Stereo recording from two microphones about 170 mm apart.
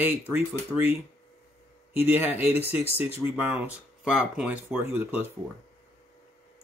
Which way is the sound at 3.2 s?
15° right (ahead or behind).